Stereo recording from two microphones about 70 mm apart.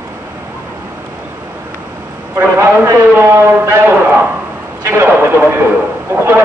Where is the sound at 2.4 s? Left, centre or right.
Right.